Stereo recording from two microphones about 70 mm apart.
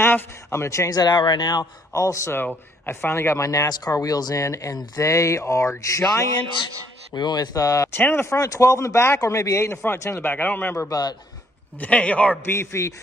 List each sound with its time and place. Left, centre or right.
0.0 s a man's voice: left
0.9 s speech: left
1.9 s a man's voice: left
2.3 s speech: left
3.9 s speech: left
7.2 s speech: left
7.9 s a man's voice: left
8.3 s speech: left
10.1 s a man's voice: left
10.9 s speech: left
11.8 s a man's voice: centre
12.4 s speech: left